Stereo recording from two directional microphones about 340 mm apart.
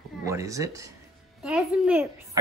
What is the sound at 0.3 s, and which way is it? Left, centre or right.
A child's voice, centre.